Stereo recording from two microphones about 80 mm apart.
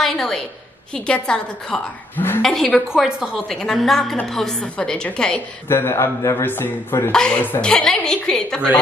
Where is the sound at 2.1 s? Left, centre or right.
Left.